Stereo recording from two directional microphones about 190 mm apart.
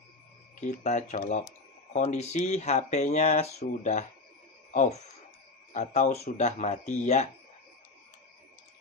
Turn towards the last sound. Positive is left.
turn(degrees=35)  # may be behind; listen again after turning